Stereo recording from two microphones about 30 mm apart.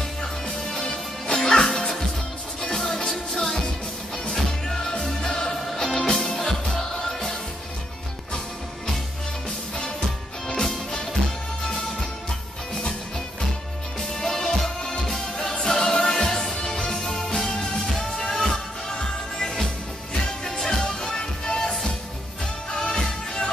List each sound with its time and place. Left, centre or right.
0.2 s music: centre
3.4 s music: left
4.3 s music: centre
9.8 s music: left
14.0 s music: centre